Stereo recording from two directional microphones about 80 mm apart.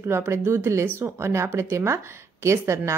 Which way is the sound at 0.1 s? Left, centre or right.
Right.